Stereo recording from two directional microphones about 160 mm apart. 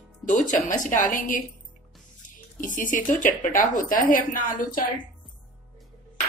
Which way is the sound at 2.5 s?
55° left (ahead or behind).